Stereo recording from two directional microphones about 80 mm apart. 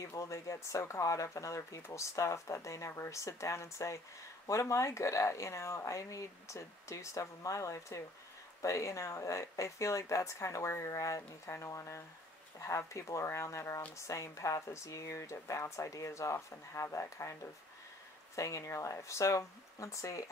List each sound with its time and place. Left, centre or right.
0.0 s speech: left